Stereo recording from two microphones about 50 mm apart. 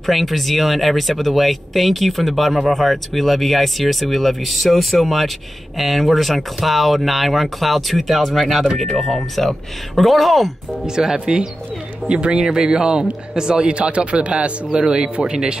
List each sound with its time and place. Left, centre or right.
0.0 s speech: centre
11.0 s a man's voice: centre